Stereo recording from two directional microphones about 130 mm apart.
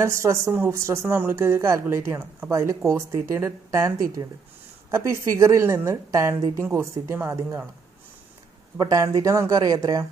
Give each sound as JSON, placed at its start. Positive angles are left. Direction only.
{"t": 0.0, "sound": "speech", "side_deg": -20}
{"t": 8.7, "sound": "speech", "side_deg": -25}